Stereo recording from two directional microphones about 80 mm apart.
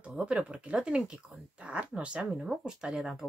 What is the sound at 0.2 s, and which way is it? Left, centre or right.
Speech, centre.